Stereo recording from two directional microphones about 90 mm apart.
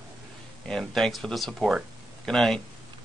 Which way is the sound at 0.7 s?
Centre (ahead or behind).